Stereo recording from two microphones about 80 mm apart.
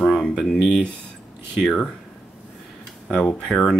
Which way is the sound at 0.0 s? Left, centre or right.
Centre.